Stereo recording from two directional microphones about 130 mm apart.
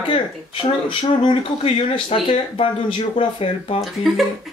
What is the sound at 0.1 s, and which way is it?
Speech, 40° left (ahead or behind).